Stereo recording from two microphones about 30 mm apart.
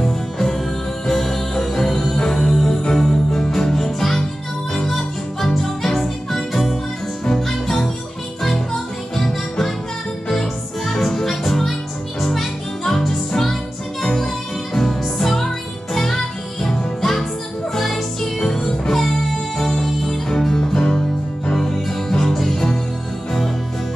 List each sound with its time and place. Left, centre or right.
0.0 s music: centre
18.4 s music: centre
20.2 s music: centre
22.1 s music: centre